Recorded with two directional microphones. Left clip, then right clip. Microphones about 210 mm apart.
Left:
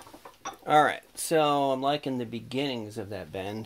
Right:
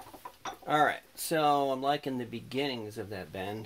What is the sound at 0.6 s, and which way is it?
Speech, 45° left (ahead or behind).